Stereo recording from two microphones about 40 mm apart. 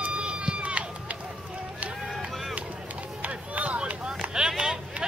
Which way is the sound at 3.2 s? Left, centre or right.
Right.